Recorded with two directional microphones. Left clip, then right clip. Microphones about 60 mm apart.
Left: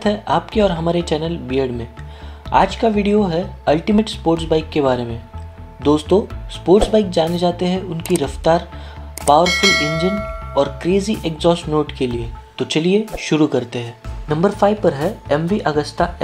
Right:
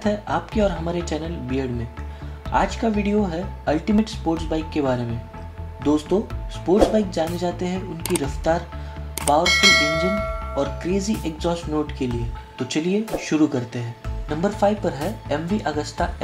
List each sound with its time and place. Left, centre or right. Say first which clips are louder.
0.0 s speech: left 6 dB; left
9.4 s speech: left 1 dB; centre
10.5 s speech: left 9 dB; left
14.3 s speech: left 5 dB; left